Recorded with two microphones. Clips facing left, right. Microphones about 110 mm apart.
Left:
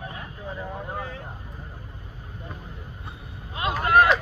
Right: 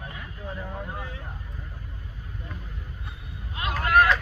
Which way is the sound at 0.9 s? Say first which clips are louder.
Left 4 dB; 40° left (ahead or behind).